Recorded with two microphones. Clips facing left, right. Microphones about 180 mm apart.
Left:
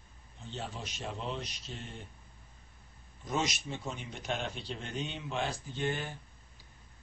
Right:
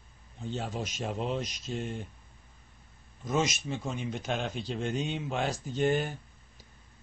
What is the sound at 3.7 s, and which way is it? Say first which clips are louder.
Speech: right 5 dB; 60° right (ahead or behind).